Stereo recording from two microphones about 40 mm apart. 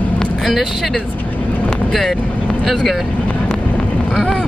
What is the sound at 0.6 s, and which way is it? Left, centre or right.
Speech, centre.